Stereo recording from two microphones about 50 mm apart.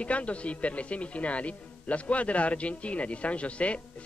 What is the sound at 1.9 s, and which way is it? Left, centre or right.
Speech, left.